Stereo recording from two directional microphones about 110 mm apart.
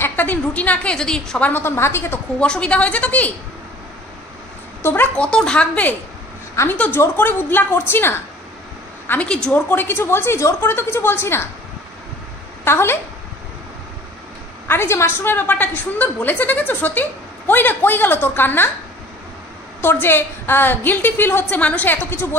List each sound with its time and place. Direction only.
0.0 s speech: 15° left (ahead or behind)
1.5 s a woman's voice: 20° left (ahead or behind)
2.4 s speech: 10° left (ahead or behind)
4.8 s speech: 20° left (ahead or behind)
6.5 s a woman's voice: 25° left (ahead or behind)
12.6 s a woman's voice: 20° left (ahead or behind)
14.7 s speech: 25° left (ahead or behind)
19.8 s speech: 20° left (ahead or behind)